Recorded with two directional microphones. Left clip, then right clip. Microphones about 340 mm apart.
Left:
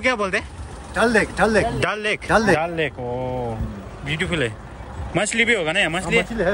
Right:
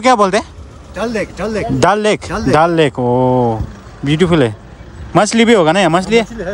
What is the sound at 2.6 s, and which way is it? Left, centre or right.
Speech, right.